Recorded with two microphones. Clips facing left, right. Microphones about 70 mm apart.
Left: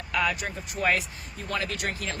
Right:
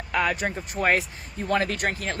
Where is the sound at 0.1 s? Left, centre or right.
Right.